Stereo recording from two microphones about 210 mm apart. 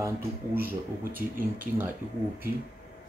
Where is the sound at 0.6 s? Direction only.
45° right (ahead or behind).